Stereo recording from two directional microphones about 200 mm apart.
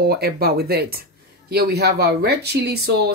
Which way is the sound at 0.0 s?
50° right (ahead or behind).